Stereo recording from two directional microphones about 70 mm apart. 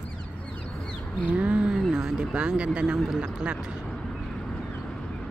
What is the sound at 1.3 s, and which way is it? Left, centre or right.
Speech, centre.